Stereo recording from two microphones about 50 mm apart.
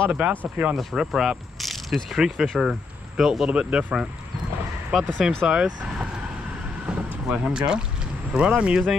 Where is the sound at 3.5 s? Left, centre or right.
Right.